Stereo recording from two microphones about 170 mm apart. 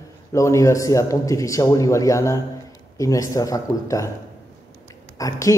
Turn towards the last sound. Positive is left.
turn(degrees=20)  # may be behind; listen again after turning